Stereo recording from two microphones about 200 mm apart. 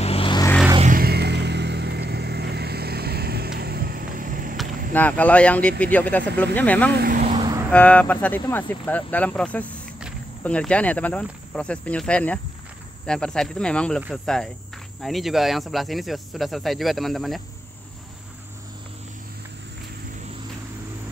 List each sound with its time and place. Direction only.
0.0 s vehicle: 30° left (ahead or behind)
0.7 s vehicle: 40° right (ahead or behind)
4.9 s speech: 10° left (ahead or behind)
6.9 s speech: 50° right (ahead or behind)
7.2 s vehicle: 35° right (ahead or behind)
7.7 s speech: 5° left (ahead or behind)
13.0 s cricket: 5° left (ahead or behind)